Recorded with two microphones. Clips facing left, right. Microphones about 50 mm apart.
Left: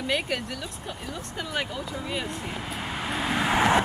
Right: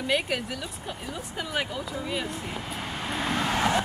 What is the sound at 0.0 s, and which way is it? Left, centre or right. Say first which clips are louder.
Speech: right 1 dB; centre.